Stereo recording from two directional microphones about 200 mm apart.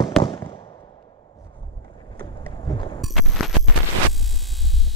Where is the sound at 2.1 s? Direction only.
20° left (ahead or behind).